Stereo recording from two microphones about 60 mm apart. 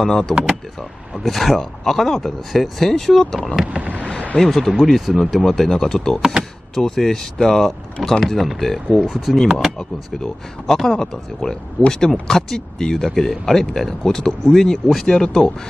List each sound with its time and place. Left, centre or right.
0.0 s speech: centre
3.9 s a sound: centre
4.4 s speech: centre